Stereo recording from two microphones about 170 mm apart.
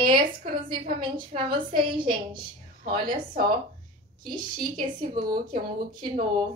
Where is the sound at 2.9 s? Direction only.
60° right (ahead or behind).